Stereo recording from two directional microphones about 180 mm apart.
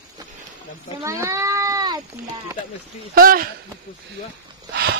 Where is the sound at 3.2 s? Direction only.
55° right (ahead or behind).